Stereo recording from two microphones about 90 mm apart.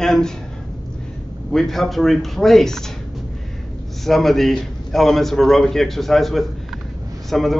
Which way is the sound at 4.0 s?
5° left (ahead or behind).